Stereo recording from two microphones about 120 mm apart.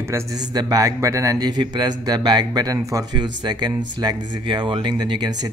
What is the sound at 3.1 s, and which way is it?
Speech, 40° right (ahead or behind).